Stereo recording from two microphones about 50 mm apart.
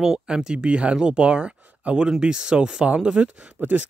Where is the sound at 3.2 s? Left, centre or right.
Right.